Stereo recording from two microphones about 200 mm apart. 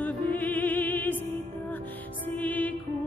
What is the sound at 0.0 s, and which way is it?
Music, 10° left (ahead or behind).